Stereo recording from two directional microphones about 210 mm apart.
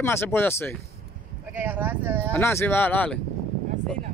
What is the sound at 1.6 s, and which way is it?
Speech, 10° right (ahead or behind).